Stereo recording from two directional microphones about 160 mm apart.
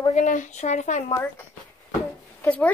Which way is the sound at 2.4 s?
10° left (ahead or behind).